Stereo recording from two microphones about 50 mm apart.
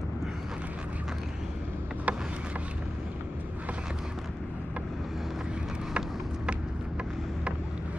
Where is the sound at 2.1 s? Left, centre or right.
Right.